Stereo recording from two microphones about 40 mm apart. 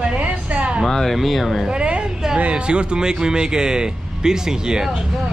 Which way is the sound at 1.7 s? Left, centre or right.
Right.